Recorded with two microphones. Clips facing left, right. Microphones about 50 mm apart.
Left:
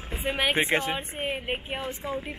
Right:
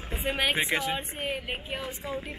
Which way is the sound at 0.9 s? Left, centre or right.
Centre.